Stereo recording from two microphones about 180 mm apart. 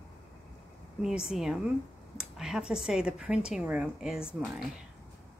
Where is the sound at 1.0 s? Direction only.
5° right (ahead or behind).